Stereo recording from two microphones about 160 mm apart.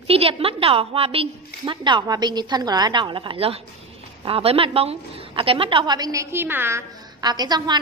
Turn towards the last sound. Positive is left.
turn(degrees=-25)  # may be behind; listen again after turning